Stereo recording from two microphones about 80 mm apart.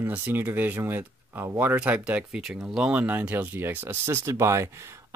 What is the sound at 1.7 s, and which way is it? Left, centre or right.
Speech, centre.